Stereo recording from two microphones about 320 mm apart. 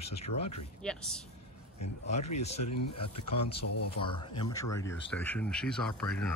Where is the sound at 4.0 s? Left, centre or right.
Centre.